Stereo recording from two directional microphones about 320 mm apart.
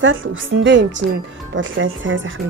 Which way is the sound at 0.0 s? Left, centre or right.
Right.